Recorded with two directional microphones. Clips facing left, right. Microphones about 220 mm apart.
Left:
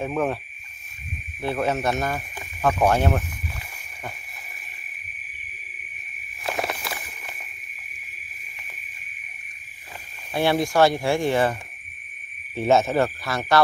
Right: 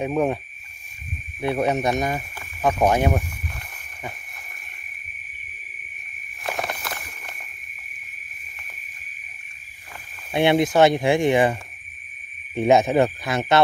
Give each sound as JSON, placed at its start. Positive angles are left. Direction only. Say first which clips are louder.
{"t": 0.0, "sound": "speech", "louder": "right 3 dB", "side_deg": -15}
{"t": 1.4, "sound": "speech", "louder": "right 2 dB", "side_deg": -20}
{"t": 6.4, "sound": "walk", "louder": "left 1 dB", "side_deg": 0}
{"t": 10.3, "sound": "speech", "louder": "right 3 dB", "side_deg": -20}
{"t": 12.5, "sound": "speech", "louder": "right 3 dB", "side_deg": -15}